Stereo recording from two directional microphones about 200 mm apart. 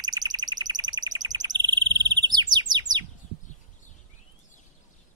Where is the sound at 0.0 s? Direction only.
20° right (ahead or behind).